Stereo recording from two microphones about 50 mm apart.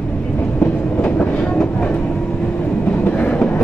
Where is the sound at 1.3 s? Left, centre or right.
Centre.